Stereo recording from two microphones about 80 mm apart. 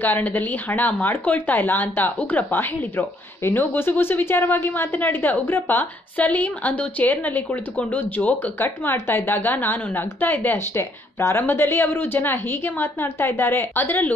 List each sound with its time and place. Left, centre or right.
0.0 s speech: left
8.5 s speech: left